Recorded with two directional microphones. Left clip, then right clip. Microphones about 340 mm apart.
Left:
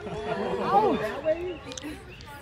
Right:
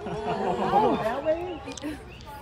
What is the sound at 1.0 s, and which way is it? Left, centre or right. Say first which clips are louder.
Speech: right 1 dB; centre.